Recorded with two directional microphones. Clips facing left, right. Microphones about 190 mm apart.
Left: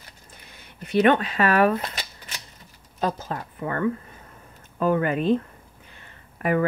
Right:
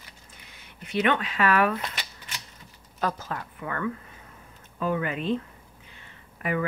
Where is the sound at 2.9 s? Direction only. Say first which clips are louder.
Left 3 dB; 25° left (ahead or behind).